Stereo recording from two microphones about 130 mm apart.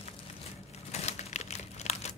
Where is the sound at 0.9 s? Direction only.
55° left (ahead or behind).